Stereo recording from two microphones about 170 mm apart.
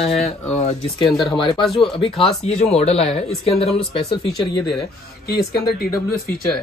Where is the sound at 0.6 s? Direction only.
30° left (ahead or behind).